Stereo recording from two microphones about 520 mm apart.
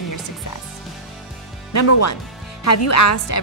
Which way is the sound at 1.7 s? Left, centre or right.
Left.